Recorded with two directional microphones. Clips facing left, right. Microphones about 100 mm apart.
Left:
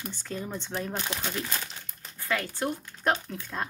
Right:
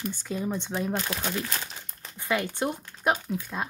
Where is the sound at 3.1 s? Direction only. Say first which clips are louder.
Right 2 dB; 10° right (ahead or behind).